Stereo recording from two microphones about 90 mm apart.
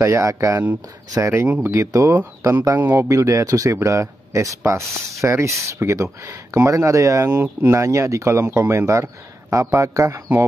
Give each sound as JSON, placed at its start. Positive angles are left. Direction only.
{"t": 0.0, "sound": "speech", "side_deg": -35}
{"t": 1.3, "sound": "speech", "side_deg": -25}
{"t": 1.8, "sound": "speech", "side_deg": -35}